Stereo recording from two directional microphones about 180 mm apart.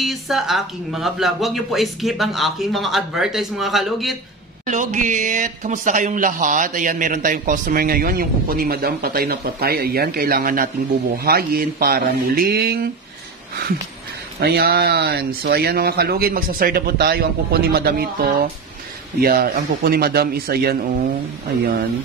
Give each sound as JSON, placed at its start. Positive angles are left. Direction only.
{"t": 0.0, "sound": "speech", "side_deg": 0}
{"t": 4.6, "sound": "speech", "side_deg": -45}
{"t": 14.4, "sound": "speech", "side_deg": -60}